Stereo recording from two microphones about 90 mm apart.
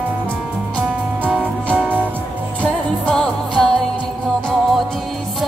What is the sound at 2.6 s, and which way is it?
Music, 10° left (ahead or behind).